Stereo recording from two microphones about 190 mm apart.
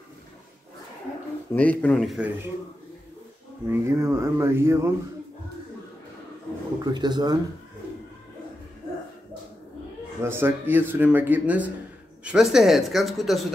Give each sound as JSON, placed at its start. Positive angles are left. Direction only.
{"t": 1.5, "sound": "speech", "side_deg": 5}
{"t": 3.6, "sound": "speech", "side_deg": -10}
{"t": 6.8, "sound": "speech", "side_deg": -20}
{"t": 10.2, "sound": "speech", "side_deg": -10}